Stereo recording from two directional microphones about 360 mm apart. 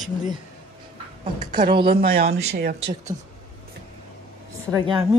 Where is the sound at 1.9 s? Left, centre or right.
Right.